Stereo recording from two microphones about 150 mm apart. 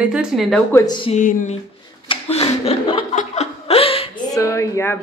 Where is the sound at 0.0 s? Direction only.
5° right (ahead or behind).